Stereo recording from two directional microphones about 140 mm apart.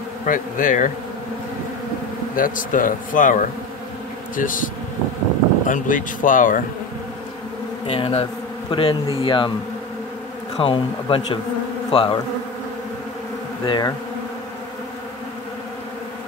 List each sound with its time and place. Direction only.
0.3 s a man's voice: 70° left (ahead or behind)
2.3 s a man's voice: 75° left (ahead or behind)
5.7 s a man's voice: 70° left (ahead or behind)
7.8 s speech: 45° left (ahead or behind)
10.6 s speech: 40° left (ahead or behind)
13.7 s speech: 30° left (ahead or behind)